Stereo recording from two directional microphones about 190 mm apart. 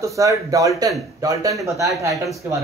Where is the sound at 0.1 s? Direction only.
15° right (ahead or behind).